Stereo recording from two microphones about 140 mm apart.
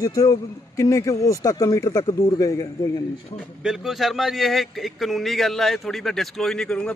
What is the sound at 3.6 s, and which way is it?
A man's voice, centre (ahead or behind).